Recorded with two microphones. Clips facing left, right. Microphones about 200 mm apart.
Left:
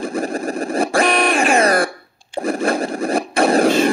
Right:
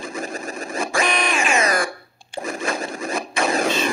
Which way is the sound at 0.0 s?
55° left (ahead or behind).